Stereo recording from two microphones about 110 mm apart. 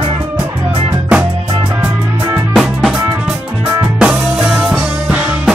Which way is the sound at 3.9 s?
5° right (ahead or behind).